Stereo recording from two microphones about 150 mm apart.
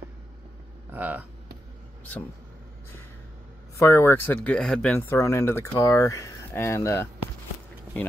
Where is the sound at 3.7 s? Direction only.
20° left (ahead or behind).